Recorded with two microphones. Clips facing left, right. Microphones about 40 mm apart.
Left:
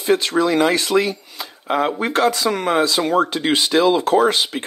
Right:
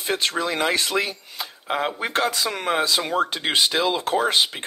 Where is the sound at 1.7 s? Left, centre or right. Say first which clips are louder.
Left 6 dB; centre.